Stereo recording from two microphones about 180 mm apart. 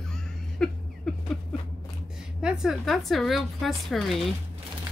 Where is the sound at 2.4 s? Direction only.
5° right (ahead or behind).